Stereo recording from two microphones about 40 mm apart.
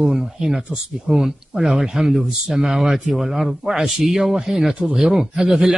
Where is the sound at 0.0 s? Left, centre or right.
Centre.